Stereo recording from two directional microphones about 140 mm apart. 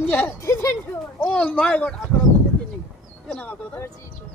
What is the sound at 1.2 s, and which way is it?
Speech, 10° left (ahead or behind).